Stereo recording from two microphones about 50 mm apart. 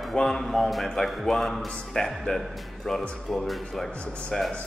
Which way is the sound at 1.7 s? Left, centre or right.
Centre.